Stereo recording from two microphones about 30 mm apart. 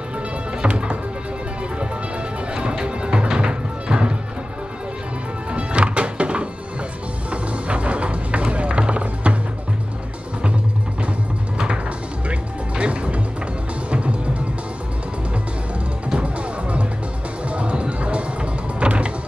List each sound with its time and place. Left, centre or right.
0.7 s music: right
2.5 s music: right
5.5 s music: right
11.5 s music: right
12.3 s music: right
16.2 s music: right